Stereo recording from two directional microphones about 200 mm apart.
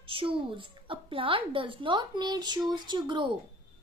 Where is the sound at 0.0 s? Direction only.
25° right (ahead or behind).